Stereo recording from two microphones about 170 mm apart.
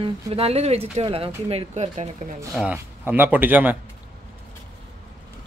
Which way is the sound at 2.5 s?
10° right (ahead or behind).